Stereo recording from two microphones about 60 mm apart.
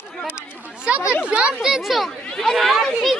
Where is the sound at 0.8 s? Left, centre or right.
Centre.